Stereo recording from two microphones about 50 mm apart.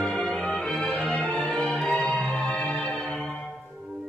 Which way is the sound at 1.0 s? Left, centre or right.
Left.